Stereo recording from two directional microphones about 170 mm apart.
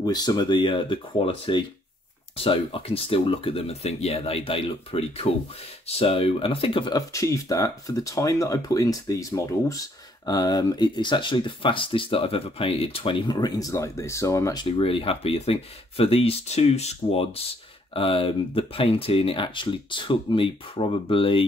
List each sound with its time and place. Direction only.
0.0 s speech: 25° left (ahead or behind)
14.8 s speech: 30° left (ahead or behind)